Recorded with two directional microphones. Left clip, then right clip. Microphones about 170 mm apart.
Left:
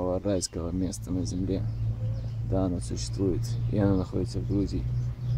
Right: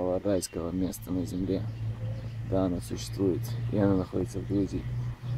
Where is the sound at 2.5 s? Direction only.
5° right (ahead or behind).